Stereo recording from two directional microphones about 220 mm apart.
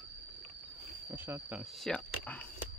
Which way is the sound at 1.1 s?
10° right (ahead or behind).